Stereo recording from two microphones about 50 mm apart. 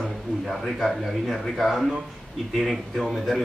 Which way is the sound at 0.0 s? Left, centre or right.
Centre.